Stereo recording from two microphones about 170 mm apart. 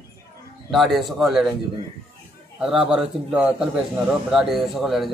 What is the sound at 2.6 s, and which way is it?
A man's voice, 5° right (ahead or behind).